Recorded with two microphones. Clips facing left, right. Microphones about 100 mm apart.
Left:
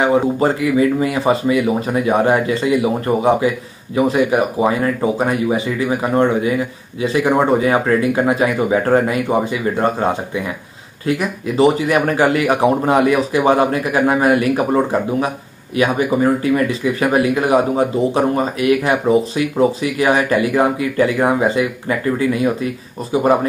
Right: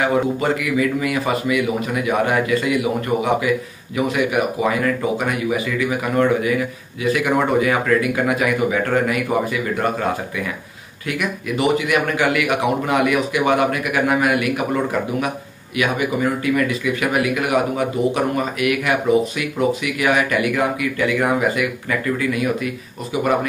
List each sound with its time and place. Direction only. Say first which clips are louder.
0.0 s a man's voice: left 4 dB; 30° left (ahead or behind)